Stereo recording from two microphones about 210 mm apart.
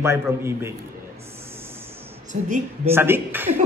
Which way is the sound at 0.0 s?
10° right (ahead or behind).